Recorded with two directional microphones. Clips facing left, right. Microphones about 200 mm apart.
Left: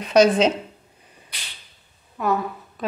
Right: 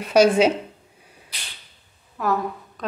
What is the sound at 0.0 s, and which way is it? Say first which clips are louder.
Speech: even; 10° right (ahead or behind).